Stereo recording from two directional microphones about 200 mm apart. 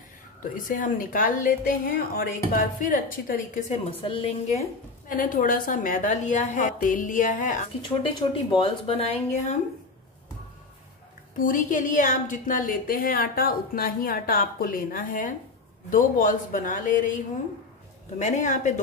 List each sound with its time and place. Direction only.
0.4 s a woman's voice: 40° left (ahead or behind)
4.0 s a woman's voice: 25° left (ahead or behind)
8.2 s a woman's voice: 25° left (ahead or behind)
11.3 s a woman's voice: 40° left (ahead or behind)
18.2 s a woman's voice: 35° left (ahead or behind)